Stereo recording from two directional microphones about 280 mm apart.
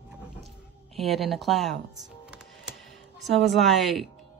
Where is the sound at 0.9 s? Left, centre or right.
Centre.